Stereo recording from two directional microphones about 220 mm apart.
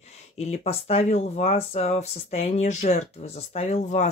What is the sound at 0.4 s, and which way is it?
Speech, 30° left (ahead or behind).